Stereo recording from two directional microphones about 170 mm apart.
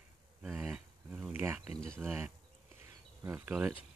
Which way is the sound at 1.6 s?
35° left (ahead or behind).